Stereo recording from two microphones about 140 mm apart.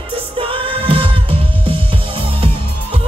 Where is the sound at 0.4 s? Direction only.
40° right (ahead or behind).